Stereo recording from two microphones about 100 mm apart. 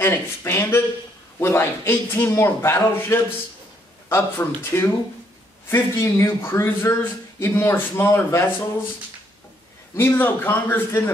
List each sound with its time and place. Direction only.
0.0 s a man's voice: 25° left (ahead or behind)
9.9 s a man's voice: 20° left (ahead or behind)